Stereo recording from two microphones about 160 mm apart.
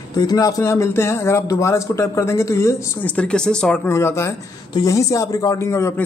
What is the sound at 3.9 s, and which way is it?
Speech, 15° left (ahead or behind).